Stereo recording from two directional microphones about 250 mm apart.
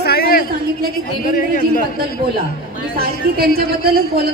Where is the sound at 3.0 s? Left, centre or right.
Right.